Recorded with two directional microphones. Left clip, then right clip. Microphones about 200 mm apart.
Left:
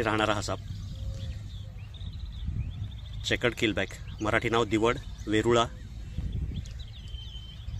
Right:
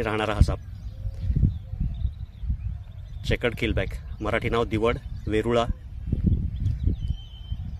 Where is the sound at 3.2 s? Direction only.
35° right (ahead or behind).